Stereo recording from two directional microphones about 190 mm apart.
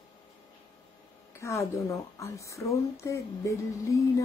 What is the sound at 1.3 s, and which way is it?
Speech, 15° left (ahead or behind).